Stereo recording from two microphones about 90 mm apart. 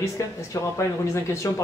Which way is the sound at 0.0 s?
35° left (ahead or behind).